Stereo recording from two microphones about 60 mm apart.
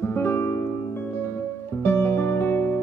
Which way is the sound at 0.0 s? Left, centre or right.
Left.